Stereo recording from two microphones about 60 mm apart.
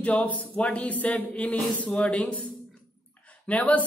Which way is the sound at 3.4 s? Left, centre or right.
Left.